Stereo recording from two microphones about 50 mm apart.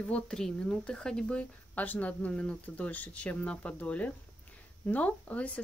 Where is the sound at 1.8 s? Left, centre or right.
Left.